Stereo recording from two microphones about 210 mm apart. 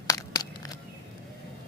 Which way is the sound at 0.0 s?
15° left (ahead or behind).